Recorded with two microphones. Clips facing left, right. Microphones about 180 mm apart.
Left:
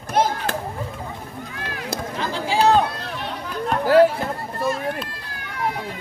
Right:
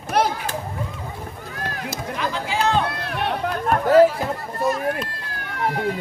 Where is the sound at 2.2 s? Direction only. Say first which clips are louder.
Left 3 dB; 30° left (ahead or behind).